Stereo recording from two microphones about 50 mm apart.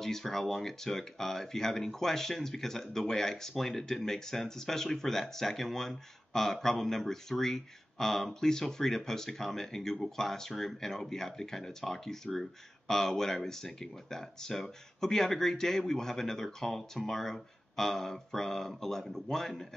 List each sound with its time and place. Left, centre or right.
0.0 s speech: centre